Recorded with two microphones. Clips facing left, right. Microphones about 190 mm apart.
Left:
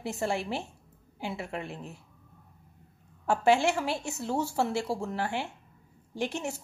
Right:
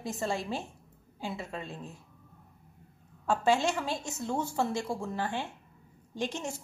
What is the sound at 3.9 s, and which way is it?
Speech, 70° left (ahead or behind).